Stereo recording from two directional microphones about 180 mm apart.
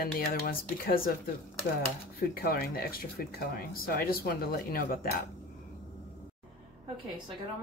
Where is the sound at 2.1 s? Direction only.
55° left (ahead or behind).